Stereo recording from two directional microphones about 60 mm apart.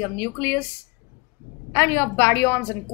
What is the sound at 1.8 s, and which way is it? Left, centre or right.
Speech, left.